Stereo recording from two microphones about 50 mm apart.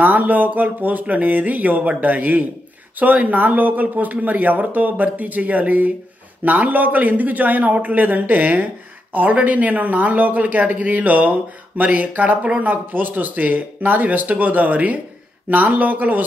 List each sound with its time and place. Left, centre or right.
0.0 s speech: right